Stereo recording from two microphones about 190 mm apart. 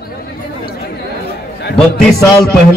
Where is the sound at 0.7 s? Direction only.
55° left (ahead or behind).